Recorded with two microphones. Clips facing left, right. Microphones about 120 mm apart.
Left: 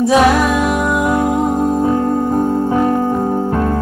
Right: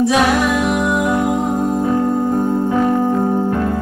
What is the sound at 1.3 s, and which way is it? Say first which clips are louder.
Music: left 2 dB; 35° left (ahead or behind).